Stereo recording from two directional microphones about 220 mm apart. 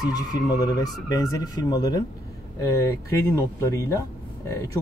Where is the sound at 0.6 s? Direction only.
15° left (ahead or behind).